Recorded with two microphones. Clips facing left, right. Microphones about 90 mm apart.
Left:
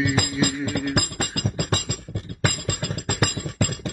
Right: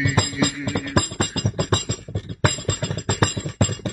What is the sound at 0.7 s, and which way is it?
Music, 40° right (ahead or behind).